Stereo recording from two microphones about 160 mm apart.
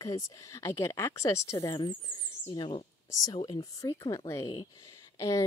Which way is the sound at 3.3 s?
40° left (ahead or behind).